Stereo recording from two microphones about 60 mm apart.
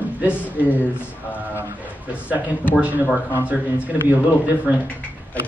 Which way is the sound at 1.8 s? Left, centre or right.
Right.